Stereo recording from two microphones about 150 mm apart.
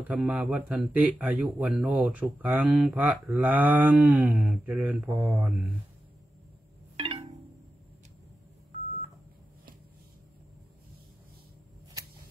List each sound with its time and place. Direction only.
0.0 s speech: 5° right (ahead or behind)
7.0 s wind chime: 40° right (ahead or behind)